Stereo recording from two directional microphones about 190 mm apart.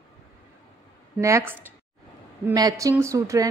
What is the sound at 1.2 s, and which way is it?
A woman's voice, 15° right (ahead or behind).